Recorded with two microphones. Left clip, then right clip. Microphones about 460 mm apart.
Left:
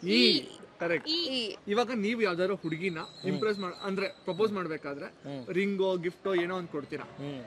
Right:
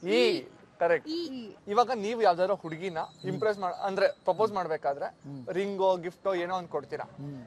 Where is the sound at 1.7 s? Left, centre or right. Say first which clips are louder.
Right 5 dB; right.